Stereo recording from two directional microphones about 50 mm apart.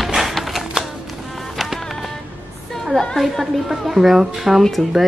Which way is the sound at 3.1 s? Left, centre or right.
Centre.